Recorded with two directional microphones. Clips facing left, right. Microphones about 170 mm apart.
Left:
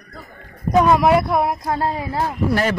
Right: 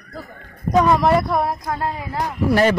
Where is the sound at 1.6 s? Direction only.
30° left (ahead or behind).